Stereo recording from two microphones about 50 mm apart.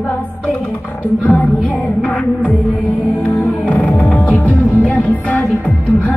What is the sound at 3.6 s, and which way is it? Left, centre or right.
Music, left.